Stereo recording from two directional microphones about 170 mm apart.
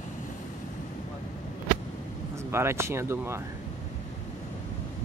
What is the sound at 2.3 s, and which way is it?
Speech, 15° right (ahead or behind).